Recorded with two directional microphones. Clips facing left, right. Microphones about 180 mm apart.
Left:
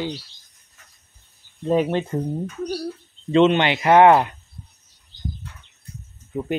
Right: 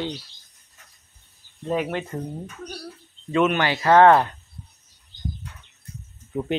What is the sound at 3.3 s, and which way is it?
Speech, 25° left (ahead or behind).